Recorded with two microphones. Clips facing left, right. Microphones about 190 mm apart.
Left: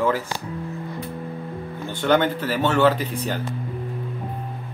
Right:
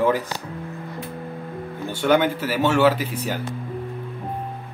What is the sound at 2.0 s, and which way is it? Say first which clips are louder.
Speech: right 1 dB; 10° right (ahead or behind).